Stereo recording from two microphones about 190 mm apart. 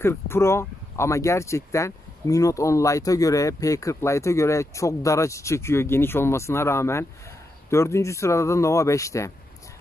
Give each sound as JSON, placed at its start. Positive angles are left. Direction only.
{"t": 0.0, "sound": "speech", "side_deg": 10}